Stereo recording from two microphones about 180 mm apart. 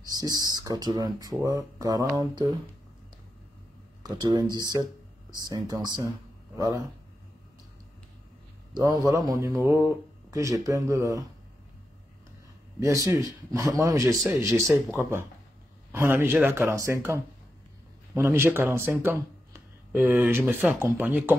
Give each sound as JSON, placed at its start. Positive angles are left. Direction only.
{"t": 0.1, "sound": "speech", "side_deg": -20}
{"t": 4.0, "sound": "a man's voice", "side_deg": -20}
{"t": 8.7, "sound": "speech", "side_deg": -20}
{"t": 12.8, "sound": "speech", "side_deg": -15}